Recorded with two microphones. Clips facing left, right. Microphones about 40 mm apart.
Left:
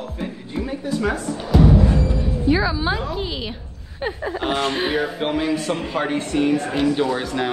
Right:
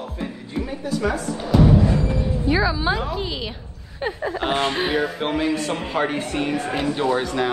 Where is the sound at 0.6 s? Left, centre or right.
Left.